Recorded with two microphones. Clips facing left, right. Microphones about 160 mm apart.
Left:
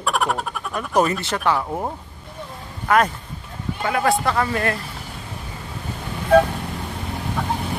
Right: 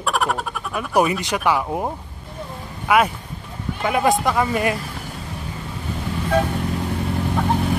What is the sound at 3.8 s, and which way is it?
Speech, 20° right (ahead or behind).